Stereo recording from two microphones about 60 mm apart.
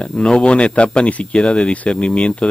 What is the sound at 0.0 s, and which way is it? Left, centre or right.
Speech, centre.